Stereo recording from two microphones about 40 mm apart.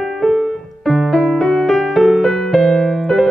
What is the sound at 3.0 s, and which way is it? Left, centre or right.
Music, centre.